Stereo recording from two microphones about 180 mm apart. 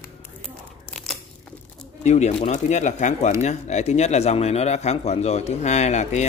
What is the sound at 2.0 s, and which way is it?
A man's voice, 40° left (ahead or behind).